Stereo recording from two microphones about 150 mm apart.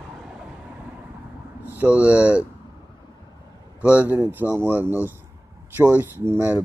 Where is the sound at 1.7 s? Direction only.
10° right (ahead or behind).